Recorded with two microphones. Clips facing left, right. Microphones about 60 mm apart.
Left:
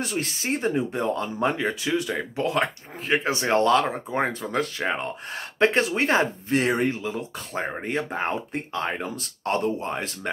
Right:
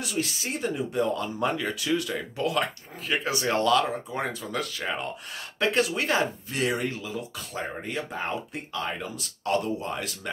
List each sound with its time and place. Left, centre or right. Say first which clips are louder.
0.0 s speech: left 2 dB; left